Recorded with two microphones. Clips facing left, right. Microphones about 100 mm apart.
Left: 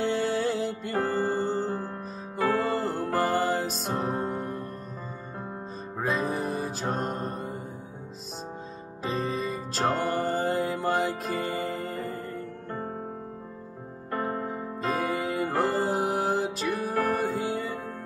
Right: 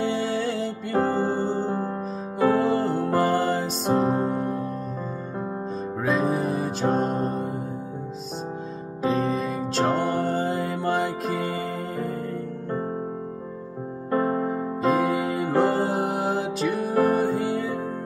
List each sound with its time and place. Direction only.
0.0 s music: centre (ahead or behind)
6.0 s music: centre (ahead or behind)
9.0 s music: centre (ahead or behind)
14.1 s music: 20° right (ahead or behind)
14.8 s music: centre (ahead or behind)